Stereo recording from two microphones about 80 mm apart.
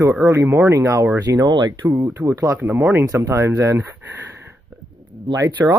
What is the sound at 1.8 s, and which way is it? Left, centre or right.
Speech, right.